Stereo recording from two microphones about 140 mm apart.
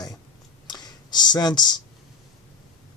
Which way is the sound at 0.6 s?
30° left (ahead or behind).